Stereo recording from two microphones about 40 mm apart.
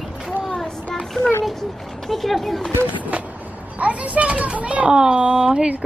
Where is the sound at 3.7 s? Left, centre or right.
Right.